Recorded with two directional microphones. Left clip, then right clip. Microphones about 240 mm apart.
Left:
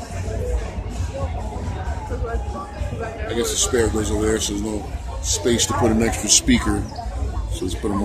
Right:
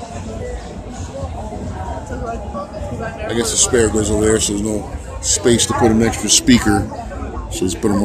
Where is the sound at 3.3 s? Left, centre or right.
Right.